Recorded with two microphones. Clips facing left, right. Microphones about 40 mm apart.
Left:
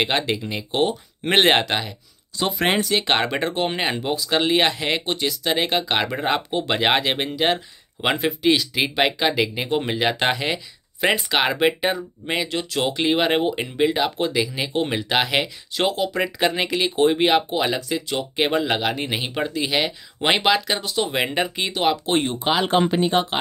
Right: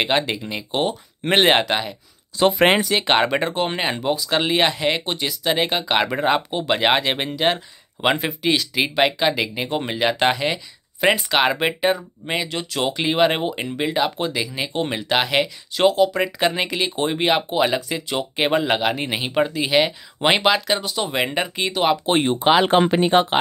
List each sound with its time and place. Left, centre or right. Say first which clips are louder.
0.0 s speech: right 1 dB; centre
2.3 s speech: right 6 dB; right
2.8 s speech: right 2 dB; centre
22.0 s speech: right 3 dB; right
22.4 s speech: right 6 dB; right